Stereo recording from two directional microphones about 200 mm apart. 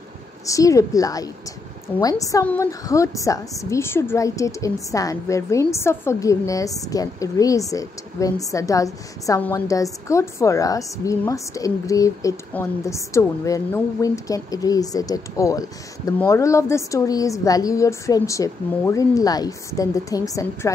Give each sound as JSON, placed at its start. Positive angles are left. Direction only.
{"t": 0.5, "sound": "a woman's voice", "side_deg": 15}